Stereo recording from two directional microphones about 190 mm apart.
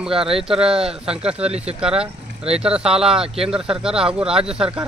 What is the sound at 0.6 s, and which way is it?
Speech, 5° right (ahead or behind).